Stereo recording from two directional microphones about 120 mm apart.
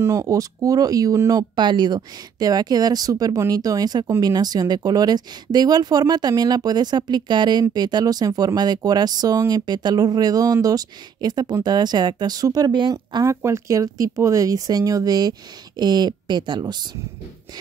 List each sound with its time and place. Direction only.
0.0 s speech: 25° right (ahead or behind)
1.5 s speech: 40° right (ahead or behind)